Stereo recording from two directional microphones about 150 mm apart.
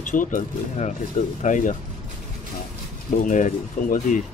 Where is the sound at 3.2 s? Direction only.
60° left (ahead or behind).